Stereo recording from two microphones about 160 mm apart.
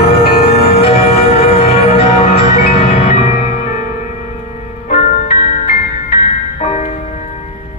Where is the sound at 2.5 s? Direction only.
70° left (ahead or behind).